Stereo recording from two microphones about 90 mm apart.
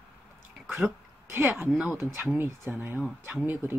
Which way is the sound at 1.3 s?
25° right (ahead or behind).